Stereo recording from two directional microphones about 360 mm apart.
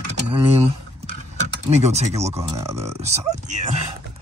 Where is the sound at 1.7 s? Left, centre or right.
Centre.